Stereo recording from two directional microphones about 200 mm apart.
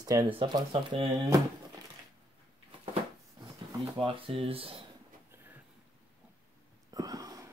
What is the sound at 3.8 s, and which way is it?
Speech, 25° right (ahead or behind).